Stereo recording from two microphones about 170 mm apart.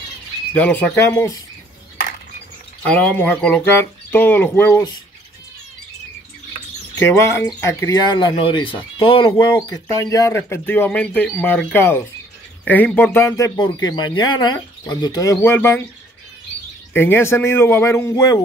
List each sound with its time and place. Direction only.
0.5 s speech: 10° left (ahead or behind)
2.8 s speech: 5° left (ahead or behind)
7.0 s speech: 15° left (ahead or behind)
16.9 s speech: 10° left (ahead or behind)